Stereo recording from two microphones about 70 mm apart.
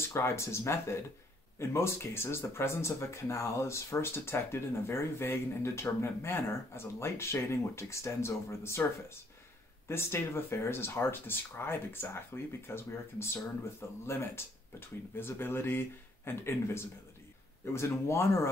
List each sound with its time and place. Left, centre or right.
0.1 s speech: left